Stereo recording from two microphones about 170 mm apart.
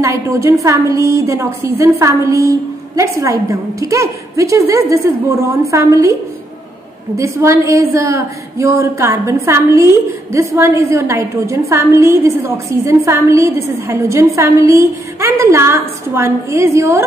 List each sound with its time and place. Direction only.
0.0 s a woman's voice: 15° right (ahead or behind)
7.2 s a woman's voice: 15° right (ahead or behind)